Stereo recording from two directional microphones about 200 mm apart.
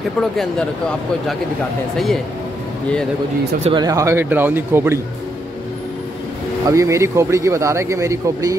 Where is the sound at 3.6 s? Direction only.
20° right (ahead or behind).